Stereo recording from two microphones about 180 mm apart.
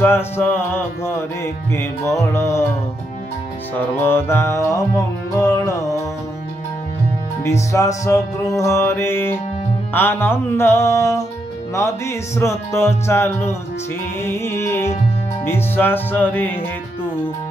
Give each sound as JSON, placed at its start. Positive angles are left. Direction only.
{"t": 0.0, "sound": "music", "side_deg": 10}
{"t": 4.0, "sound": "music", "side_deg": 15}
{"t": 7.4, "sound": "music", "side_deg": 15}